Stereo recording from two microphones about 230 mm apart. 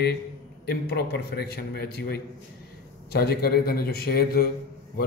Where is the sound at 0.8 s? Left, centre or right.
Left.